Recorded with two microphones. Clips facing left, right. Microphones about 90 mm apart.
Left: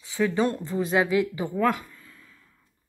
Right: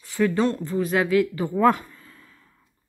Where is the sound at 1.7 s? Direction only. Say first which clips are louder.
Right 5 dB; 45° right (ahead or behind).